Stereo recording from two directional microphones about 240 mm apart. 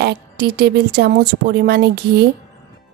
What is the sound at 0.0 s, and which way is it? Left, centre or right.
A woman's voice, right.